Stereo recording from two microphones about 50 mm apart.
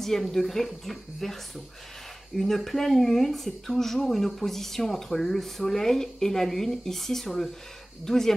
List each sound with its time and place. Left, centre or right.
0.0 s speech: centre